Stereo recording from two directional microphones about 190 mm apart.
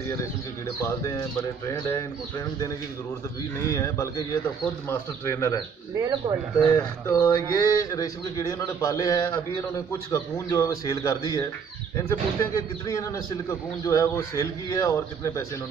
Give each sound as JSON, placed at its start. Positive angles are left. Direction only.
{"t": 0.7, "sound": "a man's voice", "side_deg": 15}
{"t": 3.5, "sound": "a man's voice", "side_deg": 15}
{"t": 5.2, "sound": "a man's voice", "side_deg": 15}
{"t": 5.9, "sound": "speech", "side_deg": -20}
{"t": 6.6, "sound": "a man's voice", "side_deg": 15}